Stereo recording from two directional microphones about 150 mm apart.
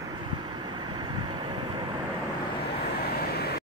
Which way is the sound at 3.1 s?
90° left.